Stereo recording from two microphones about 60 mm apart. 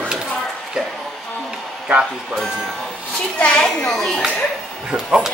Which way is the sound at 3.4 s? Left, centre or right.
Centre.